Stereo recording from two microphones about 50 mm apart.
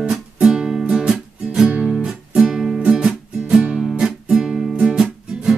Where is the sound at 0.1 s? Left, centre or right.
Centre.